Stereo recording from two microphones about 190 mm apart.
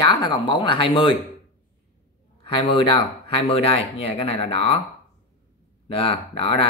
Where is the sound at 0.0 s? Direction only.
25° left (ahead or behind).